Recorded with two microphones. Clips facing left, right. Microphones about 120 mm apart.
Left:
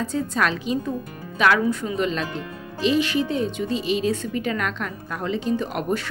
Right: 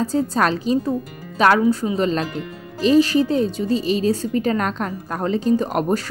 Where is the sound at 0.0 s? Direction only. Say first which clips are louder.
Right 4 dB; 35° right (ahead or behind).